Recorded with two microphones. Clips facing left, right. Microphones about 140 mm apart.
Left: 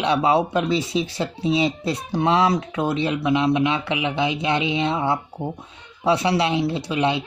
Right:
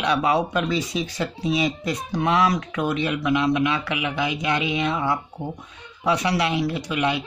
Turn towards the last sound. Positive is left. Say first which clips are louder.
# left 2 dB
turn(degrees=25)  # may be behind; listen again after turning